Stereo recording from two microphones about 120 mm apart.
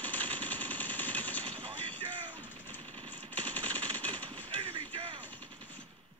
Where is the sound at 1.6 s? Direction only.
45° right (ahead or behind).